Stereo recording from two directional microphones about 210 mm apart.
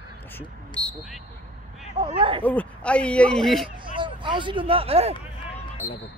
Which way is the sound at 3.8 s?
25° right (ahead or behind).